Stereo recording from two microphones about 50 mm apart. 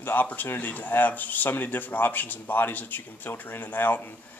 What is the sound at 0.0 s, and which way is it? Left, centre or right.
A man's voice, left.